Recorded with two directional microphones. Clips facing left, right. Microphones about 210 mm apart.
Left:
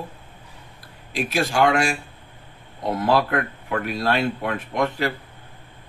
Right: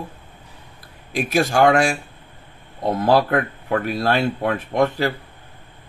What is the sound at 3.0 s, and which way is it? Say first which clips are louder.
Speech: right 3 dB; 40° right (ahead or behind).